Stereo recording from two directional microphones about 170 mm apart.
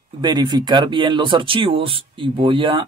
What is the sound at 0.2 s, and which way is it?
Speech, 25° right (ahead or behind).